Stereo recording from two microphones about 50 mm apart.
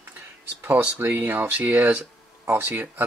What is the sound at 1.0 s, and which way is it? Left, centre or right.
Speech, right.